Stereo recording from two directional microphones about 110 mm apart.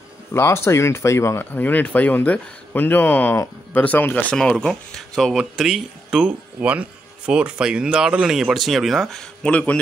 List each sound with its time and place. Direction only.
0.3 s speech: 25° left (ahead or behind)